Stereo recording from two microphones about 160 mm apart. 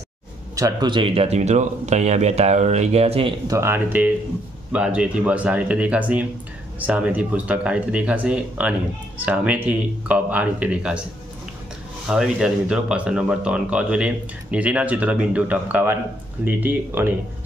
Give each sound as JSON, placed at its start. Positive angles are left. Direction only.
{"t": 0.6, "sound": "speech", "side_deg": -25}
{"t": 3.4, "sound": "speech", "side_deg": -15}
{"t": 12.1, "sound": "speech", "side_deg": -5}